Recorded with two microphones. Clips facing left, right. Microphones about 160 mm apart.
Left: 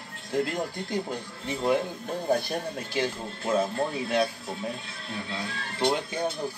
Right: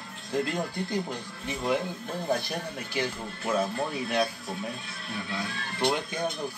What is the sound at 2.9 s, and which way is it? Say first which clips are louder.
Speech: left 2 dB; 25° left (ahead or behind).